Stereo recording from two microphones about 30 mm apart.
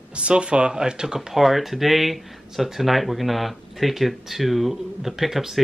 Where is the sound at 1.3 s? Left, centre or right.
Centre.